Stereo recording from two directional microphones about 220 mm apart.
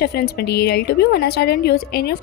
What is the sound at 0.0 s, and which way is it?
A woman's voice, 45° left (ahead or behind).